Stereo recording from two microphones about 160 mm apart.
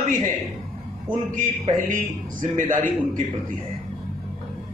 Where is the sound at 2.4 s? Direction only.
55° right (ahead or behind).